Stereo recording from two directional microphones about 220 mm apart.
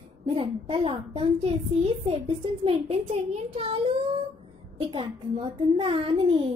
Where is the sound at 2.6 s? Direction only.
25° right (ahead or behind).